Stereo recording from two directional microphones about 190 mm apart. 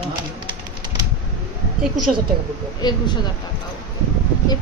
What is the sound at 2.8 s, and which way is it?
Speech, 20° left (ahead or behind).